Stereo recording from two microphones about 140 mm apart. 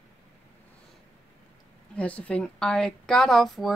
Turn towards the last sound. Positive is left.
turn(degrees=0)  # may be behind; listen again after turning